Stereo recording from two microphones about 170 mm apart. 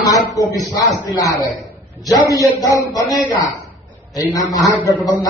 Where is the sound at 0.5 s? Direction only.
20° left (ahead or behind).